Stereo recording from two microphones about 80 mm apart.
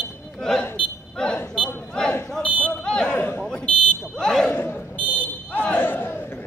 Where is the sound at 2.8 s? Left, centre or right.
Centre.